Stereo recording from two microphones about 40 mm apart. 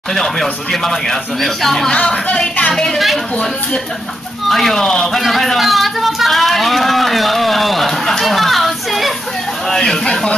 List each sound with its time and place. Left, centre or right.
0.1 s speech: centre
1.9 s speech: centre
4.5 s speech: centre
8.2 s chatter: centre
9.7 s a sound: centre